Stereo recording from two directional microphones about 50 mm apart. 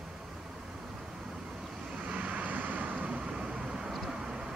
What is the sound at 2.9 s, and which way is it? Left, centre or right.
Vehicle, right.